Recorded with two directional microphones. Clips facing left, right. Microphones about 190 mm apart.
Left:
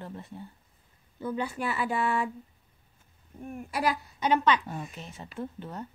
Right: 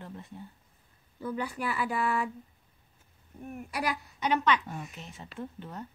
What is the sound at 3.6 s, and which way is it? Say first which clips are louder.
A woman's voice: left 4 dB; 25° left (ahead or behind).